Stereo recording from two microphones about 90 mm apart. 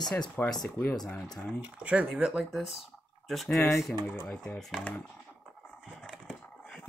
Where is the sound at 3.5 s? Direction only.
35° left (ahead or behind).